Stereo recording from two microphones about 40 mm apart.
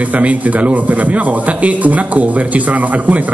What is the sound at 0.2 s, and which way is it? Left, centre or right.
A man's voice, right.